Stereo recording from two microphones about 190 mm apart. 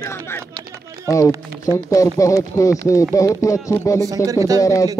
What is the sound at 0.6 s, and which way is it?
Run, 55° right (ahead or behind).